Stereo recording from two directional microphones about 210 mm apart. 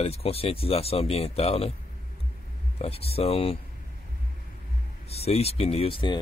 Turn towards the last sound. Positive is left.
turn(degrees=25)  # may be behind; listen again after turning